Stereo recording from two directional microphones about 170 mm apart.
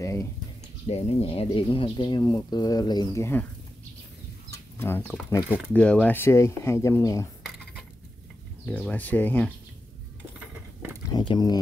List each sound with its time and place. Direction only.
0.0 s a sound: 15° left (ahead or behind)
0.8 s speech: 35° left (ahead or behind); by 3.4 s 15° left (ahead or behind)
4.5 s speech: 15° left (ahead or behind)
8.6 s speech: 10° left (ahead or behind)
11.1 s speech: 25° left (ahead or behind)